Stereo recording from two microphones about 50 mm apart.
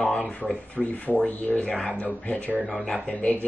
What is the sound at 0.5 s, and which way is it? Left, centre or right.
Speech, left.